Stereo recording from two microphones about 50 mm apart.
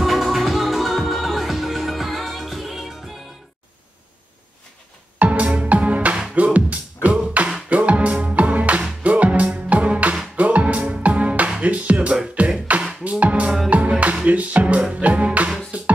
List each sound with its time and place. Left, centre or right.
0.0 s music: centre
5.2 s music: right